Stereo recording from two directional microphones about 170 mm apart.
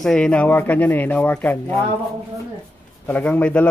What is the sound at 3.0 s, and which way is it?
Speech, 10° left (ahead or behind).